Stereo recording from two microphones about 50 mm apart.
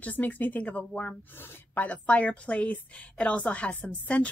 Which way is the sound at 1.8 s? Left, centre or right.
Left.